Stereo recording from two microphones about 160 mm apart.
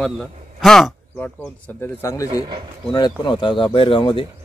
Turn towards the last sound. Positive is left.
turn(degrees=35)  # may be behind; listen again after turning